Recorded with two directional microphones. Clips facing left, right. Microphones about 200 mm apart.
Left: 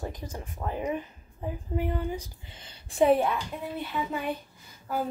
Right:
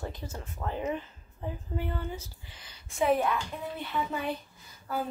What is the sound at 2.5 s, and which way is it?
Speech, 30° left (ahead or behind).